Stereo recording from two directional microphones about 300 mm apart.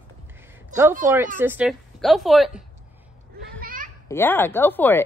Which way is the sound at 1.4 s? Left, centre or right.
Centre.